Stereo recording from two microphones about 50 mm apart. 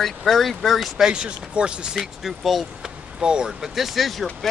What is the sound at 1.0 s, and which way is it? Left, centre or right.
Speech, centre.